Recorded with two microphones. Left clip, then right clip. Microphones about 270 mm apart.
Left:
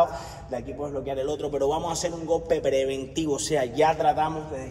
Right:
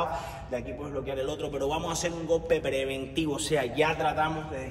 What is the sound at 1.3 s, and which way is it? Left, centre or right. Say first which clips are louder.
A man's voice: left 5 dB; centre.